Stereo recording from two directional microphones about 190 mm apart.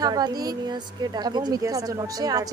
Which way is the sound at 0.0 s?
20° right (ahead or behind).